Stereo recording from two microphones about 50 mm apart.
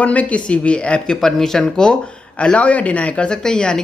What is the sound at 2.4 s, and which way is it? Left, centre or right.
Speech, left.